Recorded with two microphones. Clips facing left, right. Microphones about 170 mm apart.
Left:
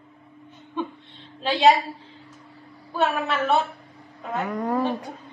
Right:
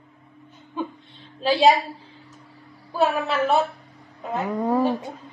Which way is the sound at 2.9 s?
5° right (ahead or behind).